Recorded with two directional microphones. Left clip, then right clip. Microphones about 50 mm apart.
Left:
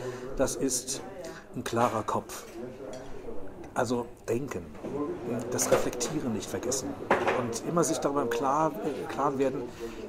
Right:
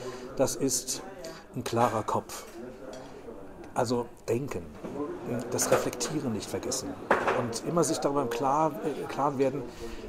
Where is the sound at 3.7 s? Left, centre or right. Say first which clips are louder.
Right 1 dB; right.